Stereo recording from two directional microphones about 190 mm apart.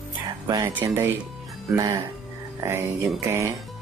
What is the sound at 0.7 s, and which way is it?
Speech, 15° right (ahead or behind).